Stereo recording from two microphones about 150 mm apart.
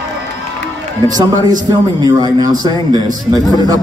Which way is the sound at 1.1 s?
25° right (ahead or behind).